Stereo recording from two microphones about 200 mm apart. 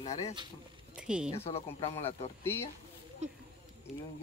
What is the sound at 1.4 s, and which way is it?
Speech, 30° left (ahead or behind).